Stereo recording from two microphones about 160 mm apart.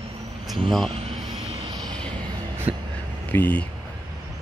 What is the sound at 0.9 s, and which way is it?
Speech, 35° right (ahead or behind).